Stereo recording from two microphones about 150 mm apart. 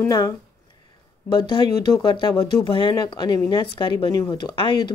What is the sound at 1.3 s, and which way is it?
Speech, 30° left (ahead or behind).